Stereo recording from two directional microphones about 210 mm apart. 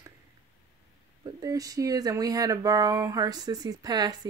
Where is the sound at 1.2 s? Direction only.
15° right (ahead or behind).